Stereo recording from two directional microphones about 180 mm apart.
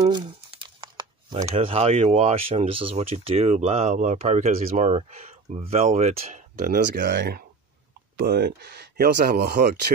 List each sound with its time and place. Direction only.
0.0 s speech: 25° right (ahead or behind); by 7.2 s 50° right (ahead or behind)
7.2 s speech: 60° right (ahead or behind)
9.9 s speech: 50° right (ahead or behind)